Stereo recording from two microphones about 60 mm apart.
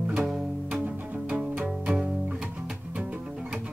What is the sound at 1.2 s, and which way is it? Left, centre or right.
Music, centre.